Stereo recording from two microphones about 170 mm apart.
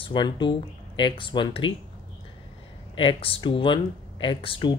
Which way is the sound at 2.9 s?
30° left (ahead or behind).